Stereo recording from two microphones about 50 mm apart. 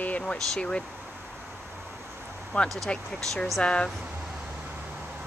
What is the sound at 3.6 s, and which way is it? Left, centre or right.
Speech, centre.